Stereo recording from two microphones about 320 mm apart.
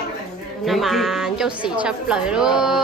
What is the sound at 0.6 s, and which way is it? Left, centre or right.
A woman's voice, centre.